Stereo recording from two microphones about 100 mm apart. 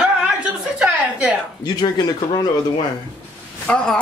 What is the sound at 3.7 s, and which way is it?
Speech, 10° left (ahead or behind).